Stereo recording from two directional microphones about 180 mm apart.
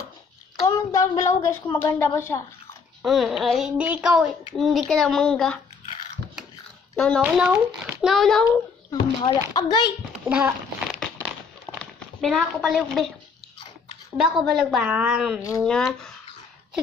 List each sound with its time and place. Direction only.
0.7 s a woman's voice: 15° left (ahead or behind)
3.0 s a child's voice: centre (ahead or behind)
7.2 s a child's voice: 10° right (ahead or behind)
8.5 s a child's voice: 20° left (ahead or behind)
10.2 s a sound: 5° right (ahead or behind)
11.8 s speech: centre (ahead or behind)
14.1 s a child's voice: centre (ahead or behind)